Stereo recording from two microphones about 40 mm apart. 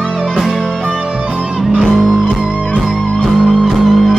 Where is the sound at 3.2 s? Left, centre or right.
Centre.